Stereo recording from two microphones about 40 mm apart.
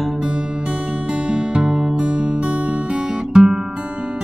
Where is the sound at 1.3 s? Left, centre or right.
Right.